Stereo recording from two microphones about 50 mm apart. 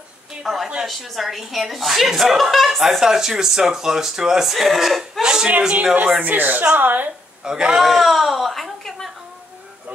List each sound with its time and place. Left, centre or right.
0.4 s speech: centre
5.2 s speech: centre
6.2 s speech: right
7.4 s speech: centre
7.7 s a woman's voice: centre